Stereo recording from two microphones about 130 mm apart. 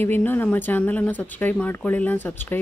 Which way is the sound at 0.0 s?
15° left (ahead or behind).